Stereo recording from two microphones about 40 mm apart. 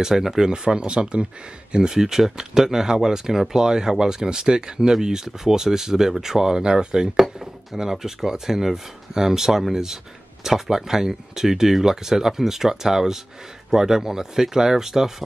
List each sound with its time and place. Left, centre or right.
0.0 s speech: centre